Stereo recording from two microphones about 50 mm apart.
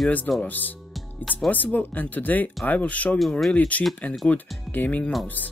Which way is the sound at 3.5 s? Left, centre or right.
Left.